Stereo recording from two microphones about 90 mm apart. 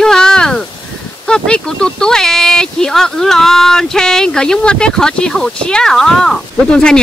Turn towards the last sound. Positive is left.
turn(degrees=10)  # may be behind; listen again after turning